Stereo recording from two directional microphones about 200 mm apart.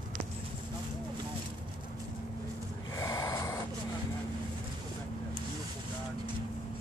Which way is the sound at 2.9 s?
15° left (ahead or behind).